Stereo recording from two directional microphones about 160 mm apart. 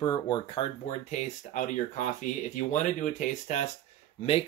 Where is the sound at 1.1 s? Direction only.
50° left (ahead or behind).